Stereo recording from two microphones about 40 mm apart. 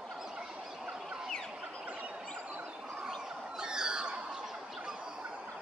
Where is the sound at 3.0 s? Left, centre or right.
Centre.